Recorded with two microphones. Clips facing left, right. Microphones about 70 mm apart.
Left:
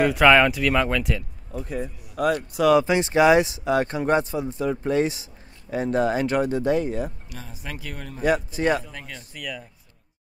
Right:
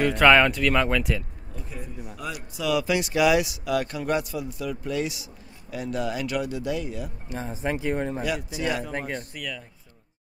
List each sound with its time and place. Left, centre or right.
0.0 s speech: centre
1.5 s speech: left
2.8 s speech: left
7.2 s speech: right
8.5 s speech: left
8.9 s speech: right
9.3 s speech: centre